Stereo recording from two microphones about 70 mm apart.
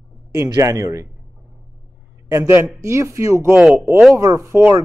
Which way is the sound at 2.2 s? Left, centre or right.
Right.